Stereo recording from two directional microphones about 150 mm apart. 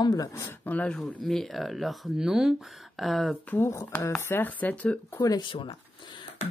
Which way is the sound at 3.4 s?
15° left (ahead or behind).